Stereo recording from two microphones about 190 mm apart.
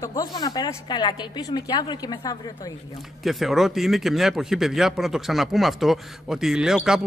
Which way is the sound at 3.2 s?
Centre (ahead or behind).